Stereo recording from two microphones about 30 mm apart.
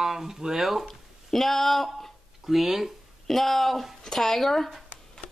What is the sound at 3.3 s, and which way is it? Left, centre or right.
A woman's voice, centre.